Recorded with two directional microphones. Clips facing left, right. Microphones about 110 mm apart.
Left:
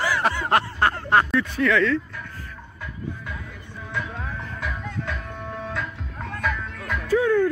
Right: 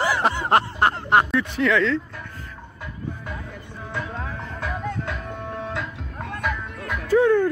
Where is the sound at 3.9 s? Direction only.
35° right (ahead or behind); by 7.0 s 10° right (ahead or behind).